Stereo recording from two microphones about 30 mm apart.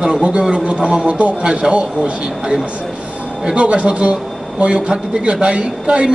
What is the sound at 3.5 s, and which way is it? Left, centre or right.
A man's voice, right.